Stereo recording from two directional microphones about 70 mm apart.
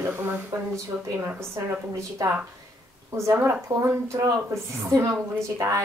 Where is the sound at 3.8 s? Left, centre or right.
Right.